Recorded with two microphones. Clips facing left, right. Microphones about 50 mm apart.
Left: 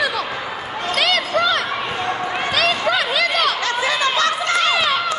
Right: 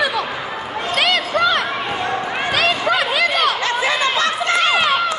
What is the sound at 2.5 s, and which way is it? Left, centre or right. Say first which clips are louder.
Chatter: right 1 dB; right.